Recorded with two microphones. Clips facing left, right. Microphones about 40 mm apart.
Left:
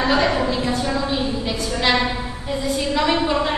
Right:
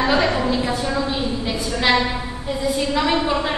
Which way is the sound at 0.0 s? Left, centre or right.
Centre.